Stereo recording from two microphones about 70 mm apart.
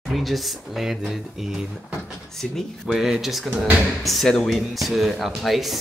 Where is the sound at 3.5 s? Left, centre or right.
Right.